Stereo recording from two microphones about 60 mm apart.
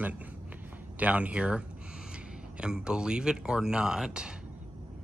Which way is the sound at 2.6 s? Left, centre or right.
Centre.